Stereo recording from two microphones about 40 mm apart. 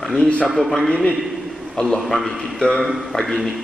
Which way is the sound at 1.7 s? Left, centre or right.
Centre.